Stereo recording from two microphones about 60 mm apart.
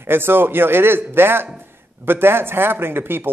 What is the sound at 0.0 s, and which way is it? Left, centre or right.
Speech, right.